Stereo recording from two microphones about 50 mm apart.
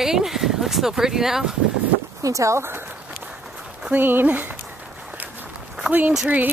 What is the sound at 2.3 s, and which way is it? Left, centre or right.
Speech, right.